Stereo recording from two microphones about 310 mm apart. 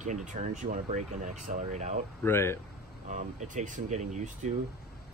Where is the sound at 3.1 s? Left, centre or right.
Right.